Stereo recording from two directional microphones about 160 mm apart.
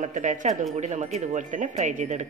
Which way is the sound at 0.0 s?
50° right (ahead or behind).